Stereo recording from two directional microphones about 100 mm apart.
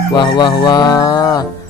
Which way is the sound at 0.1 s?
45° left (ahead or behind).